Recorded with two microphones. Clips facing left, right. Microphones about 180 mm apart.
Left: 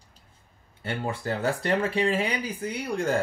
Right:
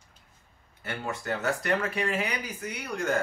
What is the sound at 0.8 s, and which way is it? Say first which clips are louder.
Speech: left 4 dB; 30° left (ahead or behind).